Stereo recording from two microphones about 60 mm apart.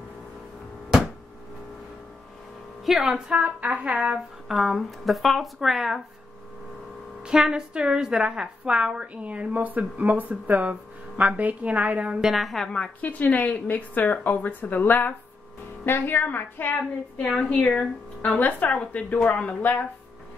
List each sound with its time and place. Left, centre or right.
2.8 s a woman's voice: centre
3.3 s a woman's voice: right
4.5 s speech: centre
7.2 s a woman's voice: centre
12.2 s speech: centre
13.0 s a woman's voice: left
17.3 s a woman's voice: centre
18.4 s a woman's voice: left